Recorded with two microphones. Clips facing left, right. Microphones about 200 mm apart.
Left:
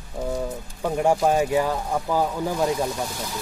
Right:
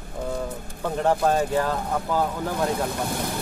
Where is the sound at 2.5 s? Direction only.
60° right (ahead or behind).